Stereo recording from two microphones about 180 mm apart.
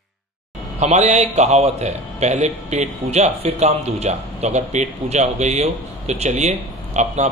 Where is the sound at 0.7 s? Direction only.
40° right (ahead or behind).